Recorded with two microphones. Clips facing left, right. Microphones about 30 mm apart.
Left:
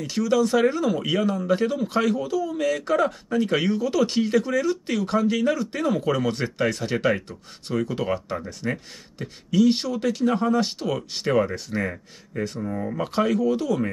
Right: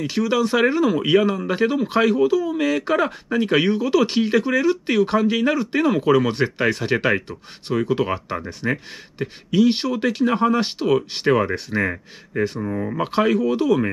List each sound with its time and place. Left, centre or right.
0.0 s speech: right